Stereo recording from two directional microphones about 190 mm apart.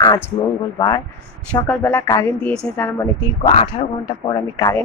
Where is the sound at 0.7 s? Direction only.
20° left (ahead or behind).